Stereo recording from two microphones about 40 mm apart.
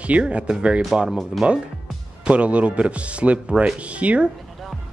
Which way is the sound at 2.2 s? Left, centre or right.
Right.